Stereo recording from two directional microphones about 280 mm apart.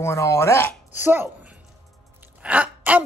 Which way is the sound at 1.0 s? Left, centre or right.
Centre.